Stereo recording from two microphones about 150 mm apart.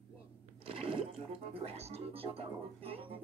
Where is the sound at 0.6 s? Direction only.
35° right (ahead or behind).